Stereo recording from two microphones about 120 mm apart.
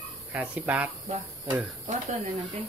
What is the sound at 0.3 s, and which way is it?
Speech, 10° right (ahead or behind).